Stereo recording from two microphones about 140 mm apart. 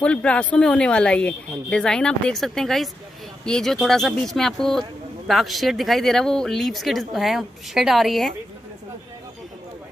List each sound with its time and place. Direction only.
0.0 s speech: 10° left (ahead or behind)